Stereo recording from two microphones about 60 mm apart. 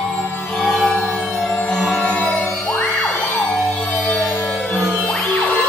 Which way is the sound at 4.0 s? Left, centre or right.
Left.